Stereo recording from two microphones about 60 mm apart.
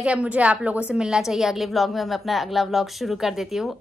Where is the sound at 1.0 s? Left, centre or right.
Centre.